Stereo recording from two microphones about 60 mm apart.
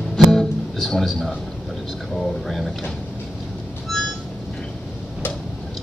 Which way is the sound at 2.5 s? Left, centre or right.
Centre.